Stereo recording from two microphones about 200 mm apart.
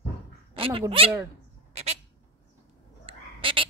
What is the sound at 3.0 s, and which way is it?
Frog, 25° right (ahead or behind).